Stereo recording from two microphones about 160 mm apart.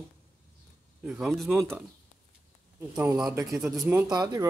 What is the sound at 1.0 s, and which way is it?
Speech, 5° right (ahead or behind).